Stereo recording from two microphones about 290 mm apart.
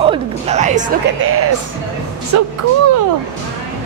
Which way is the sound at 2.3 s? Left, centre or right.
Right.